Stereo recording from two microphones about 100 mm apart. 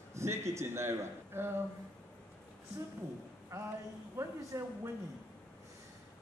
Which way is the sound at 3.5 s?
30° right (ahead or behind).